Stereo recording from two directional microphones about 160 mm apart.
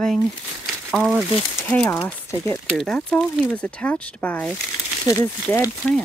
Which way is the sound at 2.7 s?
5° left (ahead or behind).